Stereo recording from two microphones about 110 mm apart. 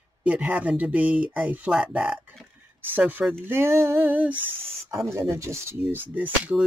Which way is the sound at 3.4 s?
20° right (ahead or behind).